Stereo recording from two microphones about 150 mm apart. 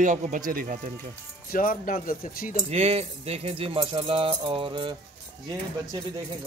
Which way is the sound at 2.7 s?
40° right (ahead or behind).